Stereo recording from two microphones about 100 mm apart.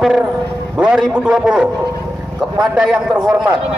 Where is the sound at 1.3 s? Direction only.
10° right (ahead or behind).